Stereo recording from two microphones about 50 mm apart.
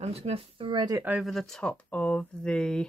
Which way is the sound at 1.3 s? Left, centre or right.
Centre.